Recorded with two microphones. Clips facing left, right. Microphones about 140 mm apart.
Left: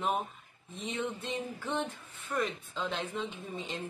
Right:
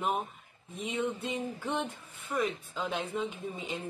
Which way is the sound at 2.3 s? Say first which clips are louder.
Right 2 dB; 5° right (ahead or behind).